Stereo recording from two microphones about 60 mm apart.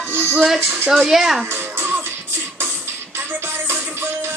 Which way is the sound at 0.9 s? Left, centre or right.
Centre.